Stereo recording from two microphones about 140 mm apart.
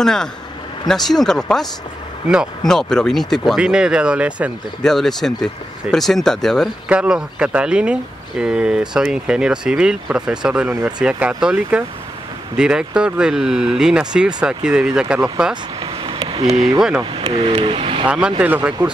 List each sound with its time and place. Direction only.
0.0 s speech: 5° left (ahead or behind)
2.7 s speech: 5° left (ahead or behind)
4.8 s speech: 5° left (ahead or behind)
15.8 s a sound: 35° right (ahead or behind)
16.3 s speech: 50° right (ahead or behind)
18.0 s speech: 5° right (ahead or behind)